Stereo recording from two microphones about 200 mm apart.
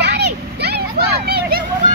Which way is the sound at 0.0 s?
55° right (ahead or behind).